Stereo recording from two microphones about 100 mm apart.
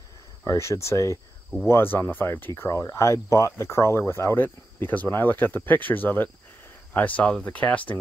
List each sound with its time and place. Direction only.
0.5 s speech: 30° left (ahead or behind)